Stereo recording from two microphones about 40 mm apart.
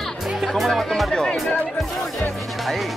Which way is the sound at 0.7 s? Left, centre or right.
Centre.